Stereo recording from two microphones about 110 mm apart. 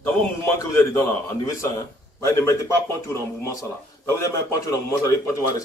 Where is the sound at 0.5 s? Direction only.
25° left (ahead or behind).